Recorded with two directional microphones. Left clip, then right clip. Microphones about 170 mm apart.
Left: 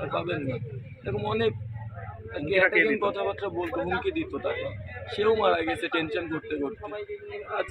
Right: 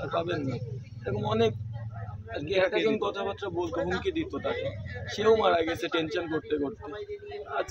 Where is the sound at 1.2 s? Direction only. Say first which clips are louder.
Right 1 dB; 15° right (ahead or behind).